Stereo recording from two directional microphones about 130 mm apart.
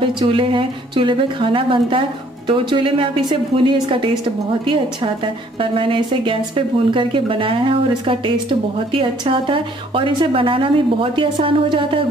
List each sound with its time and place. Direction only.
0.0 s a woman's voice: 40° right (ahead or behind)